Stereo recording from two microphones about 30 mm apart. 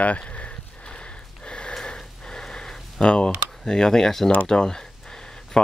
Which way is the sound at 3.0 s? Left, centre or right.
Left.